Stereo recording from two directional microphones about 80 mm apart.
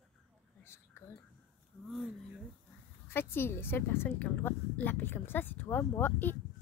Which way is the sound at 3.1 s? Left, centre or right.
Left.